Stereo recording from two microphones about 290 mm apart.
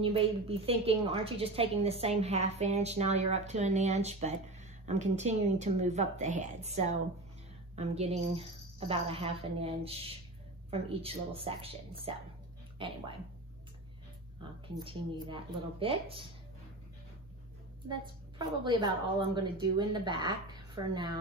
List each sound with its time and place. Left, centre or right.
0.0 s a woman's voice: centre
14.8 s a woman's voice: centre
18.4 s a woman's voice: centre